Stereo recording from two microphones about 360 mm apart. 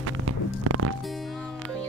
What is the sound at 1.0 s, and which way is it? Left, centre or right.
Music, centre.